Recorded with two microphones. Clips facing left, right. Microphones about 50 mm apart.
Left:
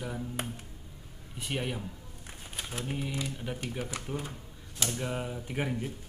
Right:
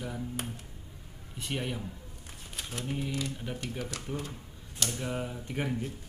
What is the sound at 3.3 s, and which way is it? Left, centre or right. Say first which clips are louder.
Speech: left 1 dB; centre.